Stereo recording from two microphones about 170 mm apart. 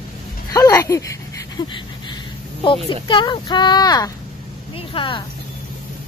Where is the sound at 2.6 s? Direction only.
30° left (ahead or behind).